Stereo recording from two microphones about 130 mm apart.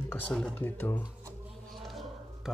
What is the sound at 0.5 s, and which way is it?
Speech, 15° left (ahead or behind).